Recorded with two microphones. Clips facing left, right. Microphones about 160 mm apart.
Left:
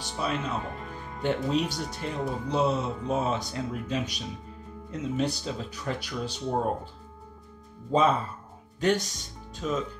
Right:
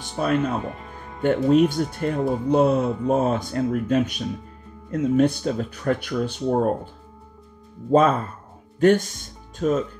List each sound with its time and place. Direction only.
0.0 s speech: 50° right (ahead or behind)
7.9 s speech: 50° right (ahead or behind)